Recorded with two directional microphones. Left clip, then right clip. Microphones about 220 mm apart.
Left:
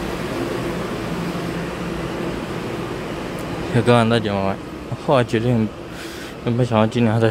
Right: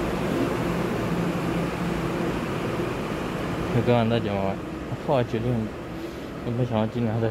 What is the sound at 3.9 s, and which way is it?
Speech, 20° left (ahead or behind).